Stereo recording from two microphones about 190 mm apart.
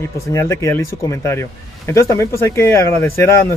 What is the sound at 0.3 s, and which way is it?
Speech, 15° left (ahead or behind).